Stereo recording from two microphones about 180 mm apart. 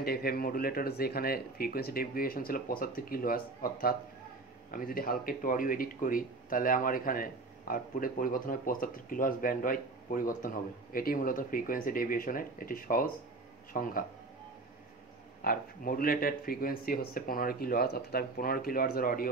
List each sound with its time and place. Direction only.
0.0 s speech: 55° left (ahead or behind)
15.4 s speech: 50° left (ahead or behind)